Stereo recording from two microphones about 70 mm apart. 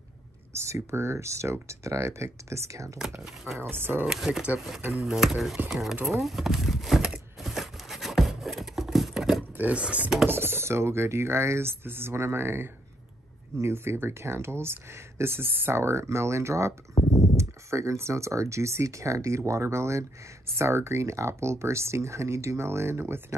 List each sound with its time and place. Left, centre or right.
0.6 s speech: right
3.7 s speech: right
4.1 s speech: centre
7.4 s a sound: centre
9.6 s speech: centre
10.2 s speech: right
16.9 s a sound: left
17.4 s speech: right